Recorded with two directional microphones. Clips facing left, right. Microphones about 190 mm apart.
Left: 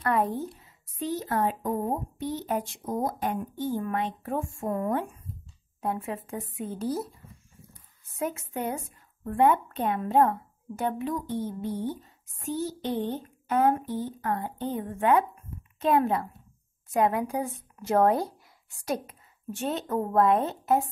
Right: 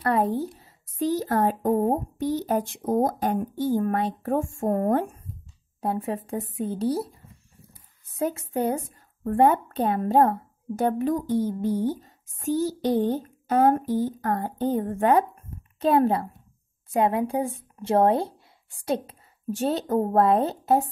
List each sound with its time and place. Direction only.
0.0 s a woman's voice: 30° right (ahead or behind)
5.8 s a woman's voice: 35° right (ahead or behind)
8.2 s a woman's voice: 35° right (ahead or behind)